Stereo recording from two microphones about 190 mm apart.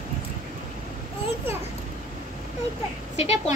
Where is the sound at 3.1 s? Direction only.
30° left (ahead or behind).